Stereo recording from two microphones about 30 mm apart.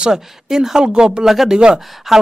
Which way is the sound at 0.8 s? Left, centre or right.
Right.